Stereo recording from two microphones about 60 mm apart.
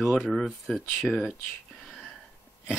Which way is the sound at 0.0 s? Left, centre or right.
Centre.